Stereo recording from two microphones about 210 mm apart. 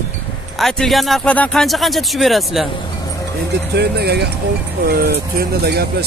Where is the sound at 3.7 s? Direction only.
50° right (ahead or behind).